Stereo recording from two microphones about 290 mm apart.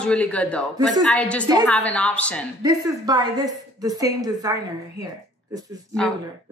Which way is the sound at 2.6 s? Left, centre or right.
Centre.